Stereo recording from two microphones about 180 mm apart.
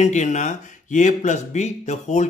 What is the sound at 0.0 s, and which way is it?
Speech, 40° left (ahead or behind).